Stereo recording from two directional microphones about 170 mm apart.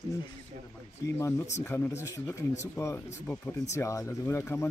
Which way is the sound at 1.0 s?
15° left (ahead or behind).